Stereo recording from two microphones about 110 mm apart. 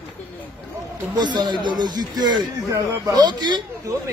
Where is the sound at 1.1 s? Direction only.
40° right (ahead or behind).